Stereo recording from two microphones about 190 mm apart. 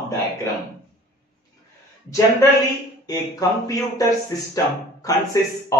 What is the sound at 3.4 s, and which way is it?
Speech, 20° left (ahead or behind).